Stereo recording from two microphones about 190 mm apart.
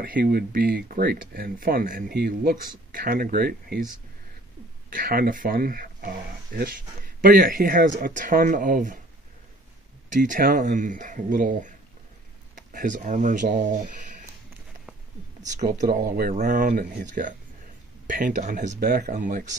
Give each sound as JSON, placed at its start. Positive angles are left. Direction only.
{"t": 0.0, "sound": "speech", "side_deg": -50}
{"t": 4.9, "sound": "speech", "side_deg": -50}
{"t": 10.1, "sound": "speech", "side_deg": -45}
{"t": 15.9, "sound": "speech", "side_deg": -45}